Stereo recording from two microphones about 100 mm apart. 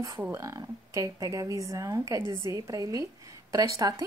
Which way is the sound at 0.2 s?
30° right (ahead or behind).